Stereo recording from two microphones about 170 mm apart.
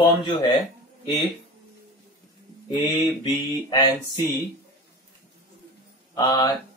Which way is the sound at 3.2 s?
25° left (ahead or behind).